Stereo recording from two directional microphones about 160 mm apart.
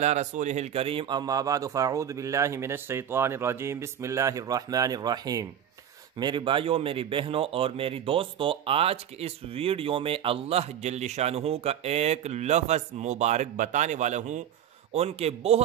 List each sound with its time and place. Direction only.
0.0 s speech: 45° right (ahead or behind)